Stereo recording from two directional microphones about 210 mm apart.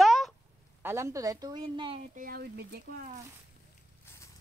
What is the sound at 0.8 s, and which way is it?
A woman's voice, 15° right (ahead or behind).